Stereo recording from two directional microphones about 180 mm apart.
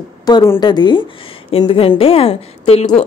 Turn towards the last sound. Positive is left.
turn(degrees=35)  # may be behind; listen again after turning